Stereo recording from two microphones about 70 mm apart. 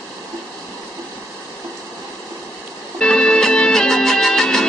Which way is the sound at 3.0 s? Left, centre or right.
Centre.